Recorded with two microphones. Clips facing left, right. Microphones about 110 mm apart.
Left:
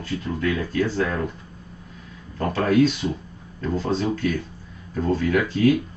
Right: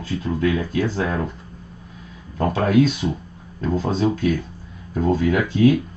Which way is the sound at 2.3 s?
25° right (ahead or behind).